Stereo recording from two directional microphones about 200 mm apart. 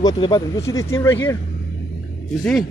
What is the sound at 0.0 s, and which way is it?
A man's voice, 20° left (ahead or behind).